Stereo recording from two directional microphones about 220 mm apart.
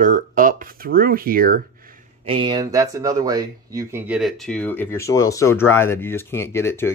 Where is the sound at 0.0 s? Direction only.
40° right (ahead or behind).